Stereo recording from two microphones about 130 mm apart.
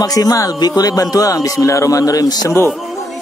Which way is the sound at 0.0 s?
30° left (ahead or behind).